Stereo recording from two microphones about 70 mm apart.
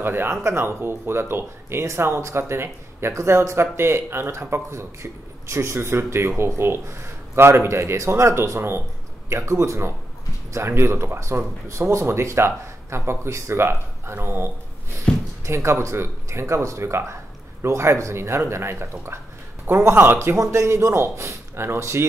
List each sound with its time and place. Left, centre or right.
0.0 s speech: right